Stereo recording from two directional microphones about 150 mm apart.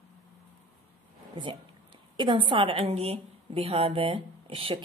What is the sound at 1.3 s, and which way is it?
A woman's voice, 35° right (ahead or behind).